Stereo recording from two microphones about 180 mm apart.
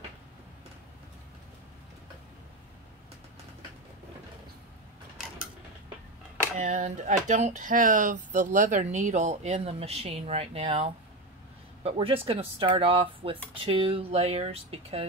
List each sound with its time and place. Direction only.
6.6 s speech: 45° right (ahead or behind)